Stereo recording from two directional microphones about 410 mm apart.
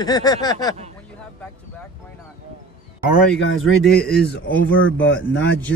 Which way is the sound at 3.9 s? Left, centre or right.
Left.